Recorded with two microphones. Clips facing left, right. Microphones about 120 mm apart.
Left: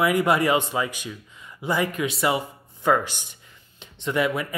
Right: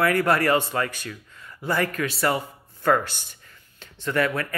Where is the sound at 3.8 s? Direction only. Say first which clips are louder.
Even; 15° left (ahead or behind).